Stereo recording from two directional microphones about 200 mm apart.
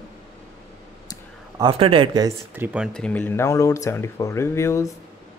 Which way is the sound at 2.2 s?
10° right (ahead or behind).